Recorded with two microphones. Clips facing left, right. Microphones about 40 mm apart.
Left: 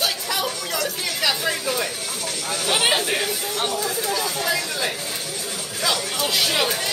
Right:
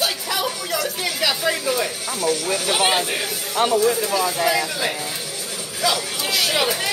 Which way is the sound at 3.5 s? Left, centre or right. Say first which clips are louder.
Right 10 dB; right.